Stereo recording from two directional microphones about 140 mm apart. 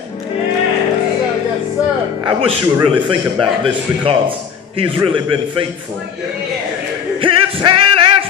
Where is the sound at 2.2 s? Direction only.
40° right (ahead or behind).